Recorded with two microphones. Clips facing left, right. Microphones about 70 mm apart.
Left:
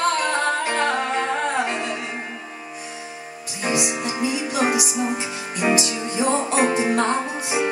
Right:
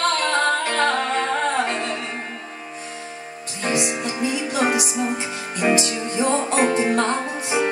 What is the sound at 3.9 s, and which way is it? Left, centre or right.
Music, centre.